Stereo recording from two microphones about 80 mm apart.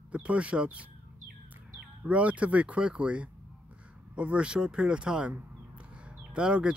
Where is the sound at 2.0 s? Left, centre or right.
Centre.